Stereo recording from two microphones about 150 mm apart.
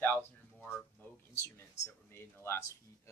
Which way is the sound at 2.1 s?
15° left (ahead or behind).